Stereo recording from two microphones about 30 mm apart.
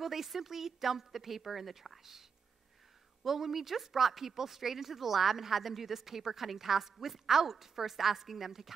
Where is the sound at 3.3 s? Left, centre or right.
Centre.